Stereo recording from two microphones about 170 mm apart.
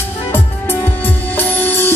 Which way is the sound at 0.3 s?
10° left (ahead or behind).